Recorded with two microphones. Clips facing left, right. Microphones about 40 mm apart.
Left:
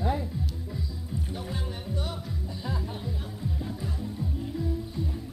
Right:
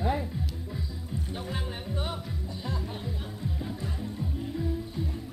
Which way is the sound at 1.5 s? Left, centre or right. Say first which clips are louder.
Even; right.